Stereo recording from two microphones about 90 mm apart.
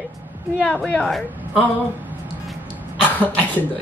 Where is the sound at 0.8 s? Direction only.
10° left (ahead or behind).